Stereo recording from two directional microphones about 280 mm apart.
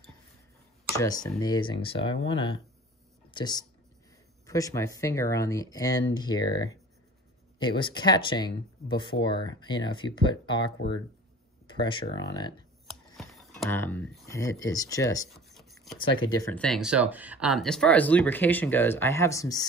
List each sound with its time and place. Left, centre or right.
0.9 s speech: centre
13.2 s speech: centre
15.3 s a sound: centre
16.2 s speech: centre